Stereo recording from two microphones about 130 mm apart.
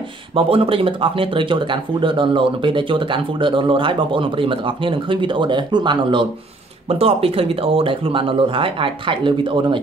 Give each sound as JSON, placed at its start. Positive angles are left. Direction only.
{"t": 0.5, "sound": "speech", "side_deg": -45}
{"t": 6.9, "sound": "speech", "side_deg": -50}